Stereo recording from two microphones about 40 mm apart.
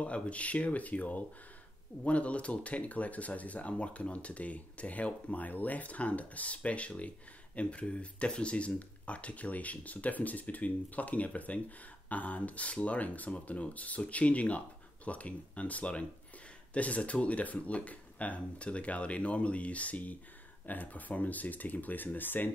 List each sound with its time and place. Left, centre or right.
0.0 s speech: left